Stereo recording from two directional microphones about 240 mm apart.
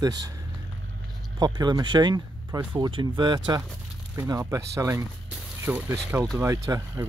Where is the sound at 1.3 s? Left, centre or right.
Centre.